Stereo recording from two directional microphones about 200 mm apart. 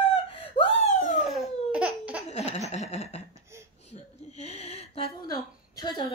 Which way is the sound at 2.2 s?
30° left (ahead or behind).